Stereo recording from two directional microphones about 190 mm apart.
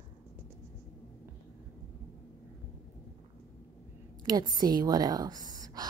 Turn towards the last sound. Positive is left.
turn(degrees=-20)  # may be behind; listen again after turning